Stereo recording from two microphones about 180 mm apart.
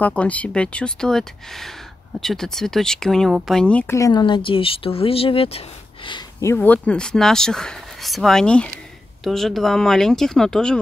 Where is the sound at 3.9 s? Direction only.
20° left (ahead or behind).